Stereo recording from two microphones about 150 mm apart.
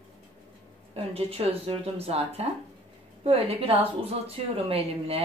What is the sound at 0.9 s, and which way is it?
A woman's voice, 40° right (ahead or behind).